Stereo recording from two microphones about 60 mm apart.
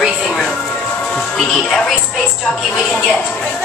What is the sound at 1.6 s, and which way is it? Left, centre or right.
Music, centre.